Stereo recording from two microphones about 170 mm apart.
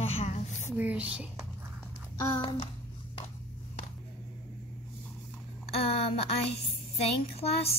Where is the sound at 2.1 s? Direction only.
25° left (ahead or behind).